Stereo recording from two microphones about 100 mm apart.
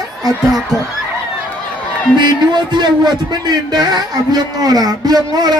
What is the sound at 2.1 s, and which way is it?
A man's voice, 50° right (ahead or behind).